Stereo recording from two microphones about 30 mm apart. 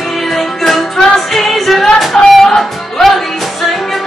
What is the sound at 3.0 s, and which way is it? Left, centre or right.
Music, centre.